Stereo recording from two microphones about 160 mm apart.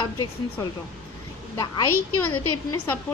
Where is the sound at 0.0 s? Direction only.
25° left (ahead or behind).